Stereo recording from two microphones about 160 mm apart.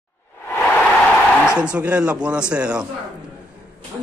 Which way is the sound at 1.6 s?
10° right (ahead or behind).